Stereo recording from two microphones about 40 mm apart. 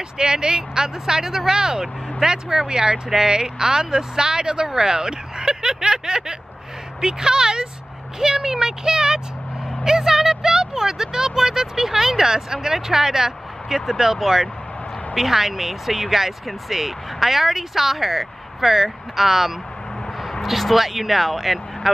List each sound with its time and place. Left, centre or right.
0.2 s speech: centre